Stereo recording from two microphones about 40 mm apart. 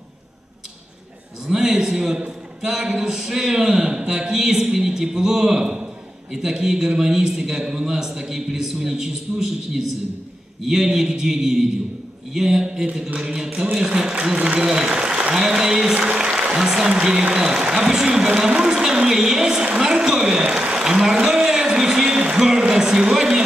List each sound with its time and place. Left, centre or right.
1.4 s speech: centre
15.3 s speech: centre
22.0 s speech: right